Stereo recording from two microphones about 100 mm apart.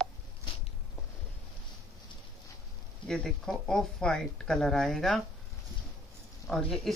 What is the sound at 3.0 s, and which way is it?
Speech, 5° left (ahead or behind).